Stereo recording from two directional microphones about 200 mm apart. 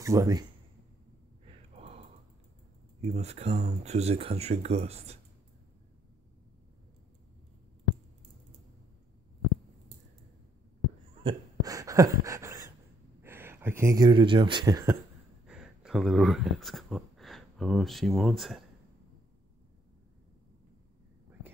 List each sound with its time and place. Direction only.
0.0 s speech: 15° right (ahead or behind)
1.4 s gasp: 30° right (ahead or behind)
3.0 s speech: 30° right (ahead or behind)
11.2 s speech: 20° right (ahead or behind)
15.4 s speech: 5° right (ahead or behind)